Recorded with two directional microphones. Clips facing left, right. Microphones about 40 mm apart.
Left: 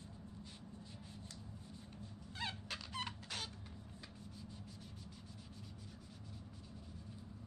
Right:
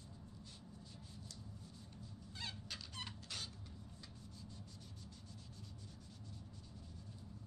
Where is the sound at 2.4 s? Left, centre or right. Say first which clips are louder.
Left 5 dB; centre.